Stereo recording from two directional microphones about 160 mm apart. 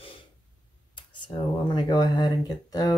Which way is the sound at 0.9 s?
30° left (ahead or behind).